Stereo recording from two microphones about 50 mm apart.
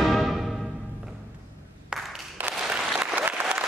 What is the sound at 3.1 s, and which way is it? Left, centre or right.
Applause, right.